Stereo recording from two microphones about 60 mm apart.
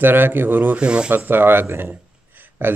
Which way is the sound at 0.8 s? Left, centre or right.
Centre.